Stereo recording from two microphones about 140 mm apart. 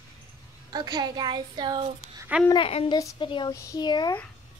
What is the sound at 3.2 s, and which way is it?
Speech, 35° left (ahead or behind).